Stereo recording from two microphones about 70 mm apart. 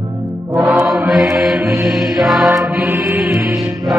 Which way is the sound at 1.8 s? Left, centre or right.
Centre.